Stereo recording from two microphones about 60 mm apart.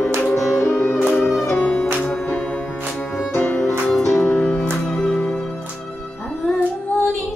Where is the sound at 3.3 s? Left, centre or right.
Left.